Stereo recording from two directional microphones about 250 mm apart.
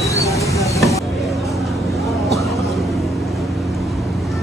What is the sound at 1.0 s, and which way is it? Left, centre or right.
Vehicle, centre.